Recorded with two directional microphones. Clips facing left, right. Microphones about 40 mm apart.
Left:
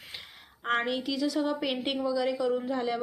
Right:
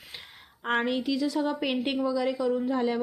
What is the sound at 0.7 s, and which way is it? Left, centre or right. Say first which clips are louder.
A woman's voice: right 2 dB; centre.